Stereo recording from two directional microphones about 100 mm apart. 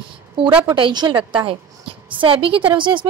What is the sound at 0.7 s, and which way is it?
A woman's voice, 55° right (ahead or behind).